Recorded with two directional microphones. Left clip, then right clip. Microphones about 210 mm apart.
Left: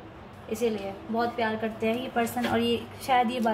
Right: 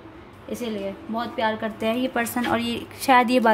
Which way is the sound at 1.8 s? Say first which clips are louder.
Right 3 dB; 50° right (ahead or behind).